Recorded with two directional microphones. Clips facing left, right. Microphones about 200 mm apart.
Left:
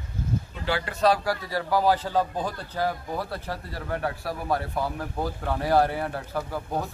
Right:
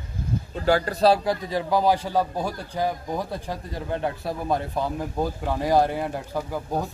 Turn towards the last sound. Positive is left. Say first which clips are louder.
# right 2 dB
turn(degrees=-15)  # may be behind; listen again after turning